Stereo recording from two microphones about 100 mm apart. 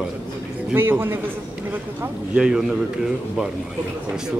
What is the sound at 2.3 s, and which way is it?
Speech, 10° right (ahead or behind).